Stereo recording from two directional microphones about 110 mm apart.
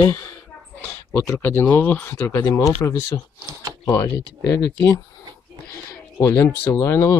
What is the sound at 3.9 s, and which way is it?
Speech, 30° left (ahead or behind).